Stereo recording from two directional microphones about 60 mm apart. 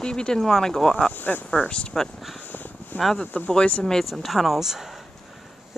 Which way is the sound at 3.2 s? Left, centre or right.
Left.